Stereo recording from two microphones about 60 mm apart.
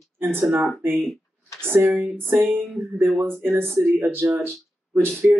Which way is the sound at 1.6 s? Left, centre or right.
Right.